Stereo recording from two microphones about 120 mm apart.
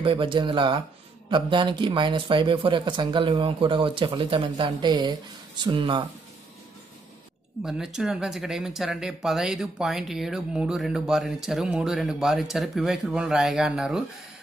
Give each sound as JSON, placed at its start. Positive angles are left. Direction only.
{"t": 0.0, "sound": "speech", "side_deg": -45}
{"t": 7.6, "sound": "speech", "side_deg": -5}